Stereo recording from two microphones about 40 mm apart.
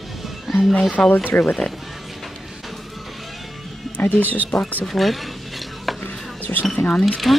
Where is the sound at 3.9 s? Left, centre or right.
Left.